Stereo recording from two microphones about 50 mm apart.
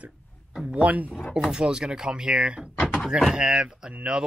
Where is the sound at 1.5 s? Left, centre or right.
Centre.